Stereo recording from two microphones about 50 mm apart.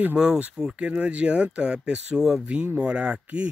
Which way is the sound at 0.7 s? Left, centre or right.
Right.